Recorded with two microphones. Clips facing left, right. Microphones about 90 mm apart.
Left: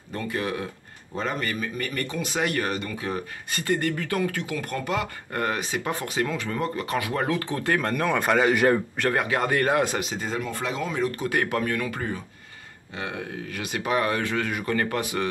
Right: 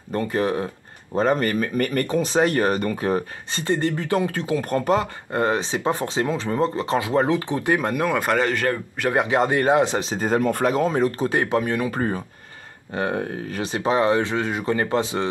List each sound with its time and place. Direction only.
0.1 s speech: 35° right (ahead or behind)
3.5 s speech: 25° right (ahead or behind)
7.9 s speech: 5° right (ahead or behind)
9.1 s speech: 20° right (ahead or behind)
10.2 s speech: 50° right (ahead or behind); by 11.9 s 20° right (ahead or behind)
11.9 s speech: 40° right (ahead or behind); by 15.2 s 25° right (ahead or behind)